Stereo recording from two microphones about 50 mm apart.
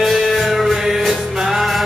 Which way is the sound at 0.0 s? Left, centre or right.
Centre.